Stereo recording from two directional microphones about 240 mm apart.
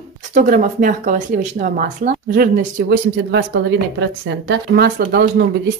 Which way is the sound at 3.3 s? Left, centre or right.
Right.